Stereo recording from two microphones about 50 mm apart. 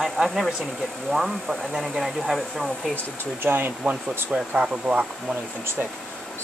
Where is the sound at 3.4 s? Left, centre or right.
Right.